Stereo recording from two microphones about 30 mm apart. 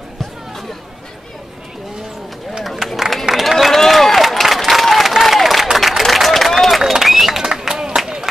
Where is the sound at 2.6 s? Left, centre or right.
Centre.